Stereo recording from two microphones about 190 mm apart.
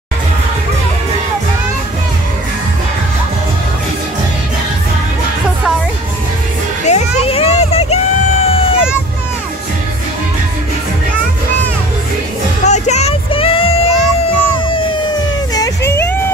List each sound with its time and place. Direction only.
6.9 s hubbub: 30° left (ahead or behind)
12.6 s child singing: 35° left (ahead or behind)
15.5 s whimper: 15° left (ahead or behind)